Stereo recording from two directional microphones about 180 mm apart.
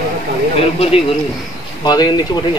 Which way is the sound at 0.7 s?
30° left (ahead or behind).